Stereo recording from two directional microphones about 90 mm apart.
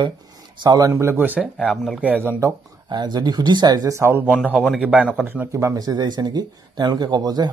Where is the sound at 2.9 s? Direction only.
55° right (ahead or behind).